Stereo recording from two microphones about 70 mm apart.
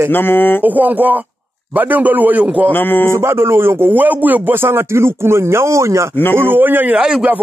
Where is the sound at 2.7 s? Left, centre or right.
Left.